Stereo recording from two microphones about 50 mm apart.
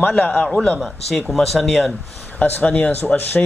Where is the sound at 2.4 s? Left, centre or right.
Left.